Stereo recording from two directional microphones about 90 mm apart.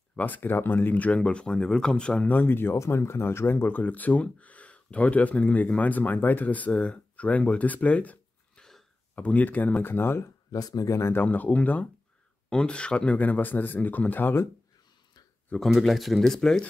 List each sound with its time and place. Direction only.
0.1 s speech: 20° left (ahead or behind)
10.5 s speech: 40° left (ahead or behind); by 14.5 s 25° left (ahead or behind)
15.7 s speech: centre (ahead or behind)